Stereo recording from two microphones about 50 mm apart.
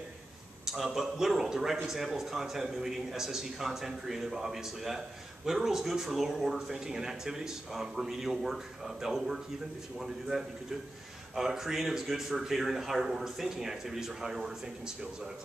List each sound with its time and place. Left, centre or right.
0.7 s a man's voice: centre